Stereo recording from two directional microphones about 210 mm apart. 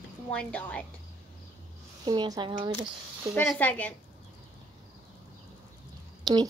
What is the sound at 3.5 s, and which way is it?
Speech, 5° left (ahead or behind).